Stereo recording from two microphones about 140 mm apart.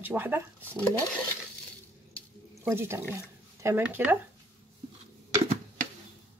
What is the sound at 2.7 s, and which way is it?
Speech, 20° right (ahead or behind).